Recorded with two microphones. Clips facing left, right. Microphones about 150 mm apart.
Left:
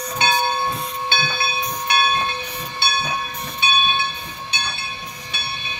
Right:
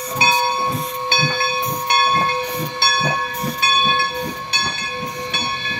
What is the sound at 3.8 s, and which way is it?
Train, 45° right (ahead or behind).